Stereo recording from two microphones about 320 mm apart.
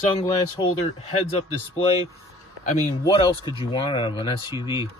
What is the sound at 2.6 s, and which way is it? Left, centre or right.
Speech, centre.